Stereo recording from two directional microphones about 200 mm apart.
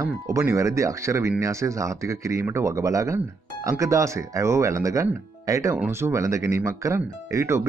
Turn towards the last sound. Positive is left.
turn(degrees=-15)  # may be behind; listen again after turning